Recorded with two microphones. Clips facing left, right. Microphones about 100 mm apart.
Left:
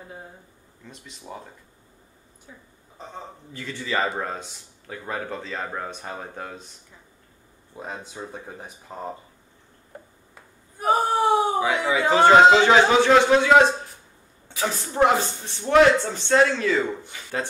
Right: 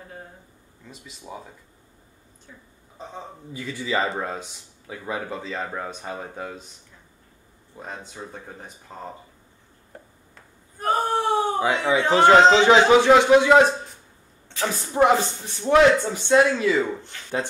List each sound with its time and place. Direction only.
0.8 s speech: 5° right (ahead or behind)
3.5 s speech: 10° right (ahead or behind)
4.1 s speech: centre (ahead or behind)
7.7 s speech: 5° left (ahead or behind)
10.3 s a sound: 10° left (ahead or behind)
11.7 s speech: 5° left (ahead or behind)
12.5 s speech: 15° right (ahead or behind)
14.7 s speech: 10° right (ahead or behind)
17.1 s speech: 10° left (ahead or behind)